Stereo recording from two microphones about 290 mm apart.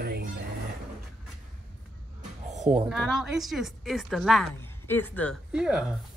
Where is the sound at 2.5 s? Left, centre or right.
Right.